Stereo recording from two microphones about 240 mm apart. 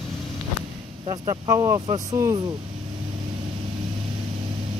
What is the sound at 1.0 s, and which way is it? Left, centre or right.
Speech, right.